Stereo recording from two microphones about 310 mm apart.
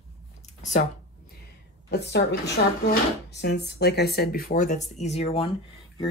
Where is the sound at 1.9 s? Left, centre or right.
Left.